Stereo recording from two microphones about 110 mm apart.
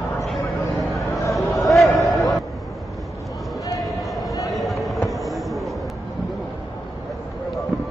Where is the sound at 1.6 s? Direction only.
Centre (ahead or behind).